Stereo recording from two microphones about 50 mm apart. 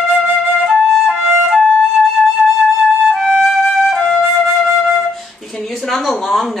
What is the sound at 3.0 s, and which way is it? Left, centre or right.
Music, centre.